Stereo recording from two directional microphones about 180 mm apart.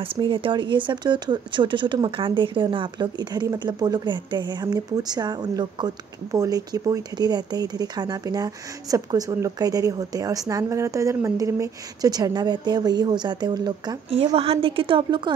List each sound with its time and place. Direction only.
0.0 s speech: 30° right (ahead or behind)